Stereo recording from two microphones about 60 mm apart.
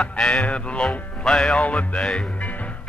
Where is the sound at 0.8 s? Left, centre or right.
Centre.